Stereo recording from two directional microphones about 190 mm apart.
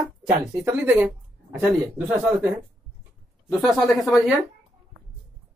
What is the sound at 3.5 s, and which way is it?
Speech, centre (ahead or behind).